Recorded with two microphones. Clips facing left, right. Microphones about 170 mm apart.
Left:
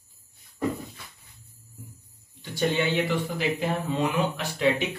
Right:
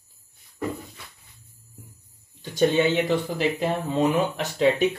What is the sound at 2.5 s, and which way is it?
Speech, 20° right (ahead or behind).